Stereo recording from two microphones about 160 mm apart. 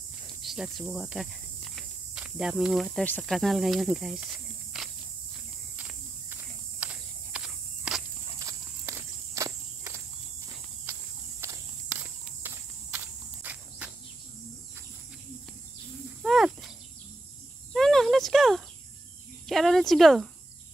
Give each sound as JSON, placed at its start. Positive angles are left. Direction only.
{"t": 0.4, "sound": "cricket", "side_deg": 0}
{"t": 3.1, "sound": "speech", "side_deg": 0}
{"t": 4.7, "sound": "walk", "side_deg": -5}
{"t": 8.5, "sound": "walk", "side_deg": -20}
{"t": 12.4, "sound": "insect", "side_deg": -10}
{"t": 16.2, "sound": "a sound", "side_deg": 0}
{"t": 17.7, "sound": "a sound", "side_deg": 0}
{"t": 19.4, "sound": "cricket", "side_deg": 0}